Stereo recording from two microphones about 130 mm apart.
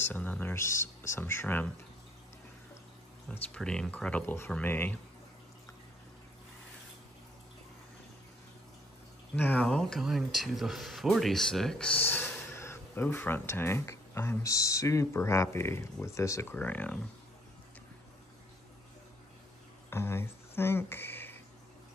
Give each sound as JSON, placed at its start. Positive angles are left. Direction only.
{"t": 0.0, "sound": "speech", "side_deg": 15}
{"t": 3.3, "sound": "speech", "side_deg": 5}
{"t": 9.3, "sound": "speech", "side_deg": 10}
{"t": 19.9, "sound": "speech", "side_deg": 20}